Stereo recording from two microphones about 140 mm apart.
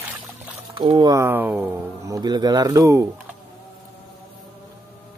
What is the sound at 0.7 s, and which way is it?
Speech, 45° right (ahead or behind).